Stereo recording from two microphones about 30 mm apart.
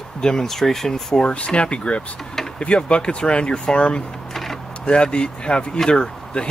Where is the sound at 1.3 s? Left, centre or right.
Left.